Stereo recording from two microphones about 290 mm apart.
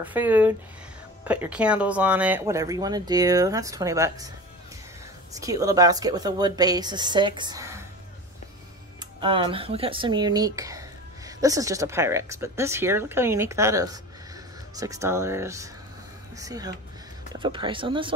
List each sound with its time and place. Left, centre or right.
0.0 s speech: centre
5.3 s speech: centre
9.0 s speech: centre